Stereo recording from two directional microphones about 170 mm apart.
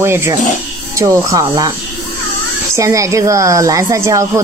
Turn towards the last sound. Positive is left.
turn(degrees=-20)  # may be behind; listen again after turning